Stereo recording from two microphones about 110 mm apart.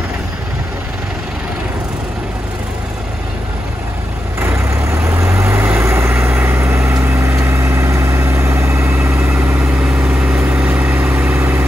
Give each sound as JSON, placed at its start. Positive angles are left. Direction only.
{"t": 4.4, "sound": "vehicle", "side_deg": -25}